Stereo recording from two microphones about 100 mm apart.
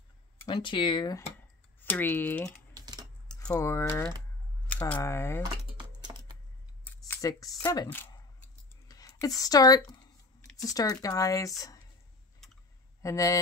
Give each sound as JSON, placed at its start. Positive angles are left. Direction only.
{"t": 0.5, "sound": "speech", "side_deg": 55}
{"t": 1.8, "sound": "speech", "side_deg": 20}
{"t": 2.7, "sound": "typing", "side_deg": -45}
{"t": 3.5, "sound": "speech", "side_deg": 30}
{"t": 4.7, "sound": "a sound", "side_deg": 15}
{"t": 5.0, "sound": "speech", "side_deg": 25}
{"t": 7.2, "sound": "speech", "side_deg": 35}
{"t": 8.8, "sound": "a sound", "side_deg": 35}
{"t": 10.6, "sound": "speech", "side_deg": 40}
{"t": 13.0, "sound": "speech", "side_deg": 35}